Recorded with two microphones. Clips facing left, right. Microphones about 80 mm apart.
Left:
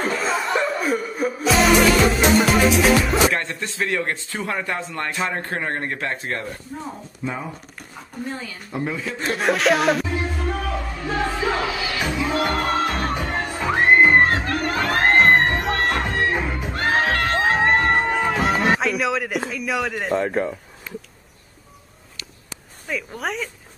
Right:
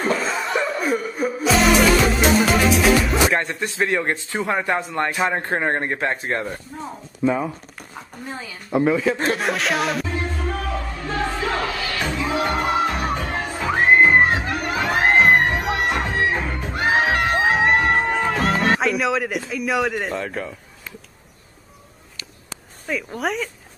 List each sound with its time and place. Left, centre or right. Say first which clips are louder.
0.0 s music: even; centre
3.3 s a man's voice: right 3 dB; centre
8.7 s a man's voice: right 9 dB; right
9.3 s speech: left 3 dB; centre
12.3 s music: right 1 dB; centre
13.1 s music: even; centre
16.7 s crowd: right 2 dB; centre
19.5 s a woman's voice: right 3 dB; centre
20.2 s speech: left 6 dB; left
22.8 s a woman's voice: right 3 dB; centre